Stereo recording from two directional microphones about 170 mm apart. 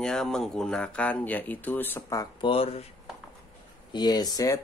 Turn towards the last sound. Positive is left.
turn(degrees=20)  # may be behind; listen again after turning